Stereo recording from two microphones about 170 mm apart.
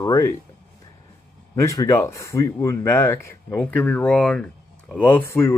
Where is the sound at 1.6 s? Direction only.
20° left (ahead or behind).